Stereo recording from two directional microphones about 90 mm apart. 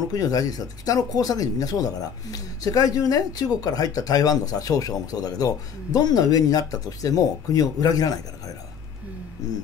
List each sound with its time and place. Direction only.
0.1 s speech: 45° left (ahead or behind)
9.4 s speech: 40° left (ahead or behind)